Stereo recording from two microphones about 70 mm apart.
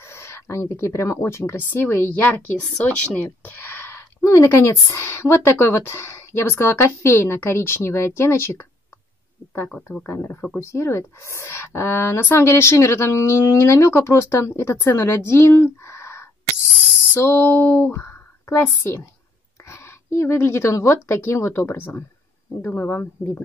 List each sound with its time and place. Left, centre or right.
0.0 s speech: left
3.4 s a sound: left
4.2 s speech: left
10.0 s speech: left
14.9 s a sound: left
17.1 s speech: left
19.6 s speech: left